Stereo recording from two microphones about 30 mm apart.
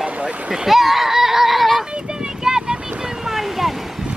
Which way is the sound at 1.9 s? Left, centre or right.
Right.